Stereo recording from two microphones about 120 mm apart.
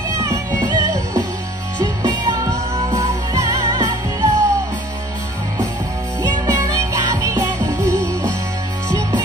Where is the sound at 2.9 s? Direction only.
25° right (ahead or behind).